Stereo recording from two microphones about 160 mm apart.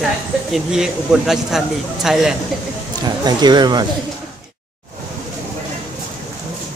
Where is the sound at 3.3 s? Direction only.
25° right (ahead or behind).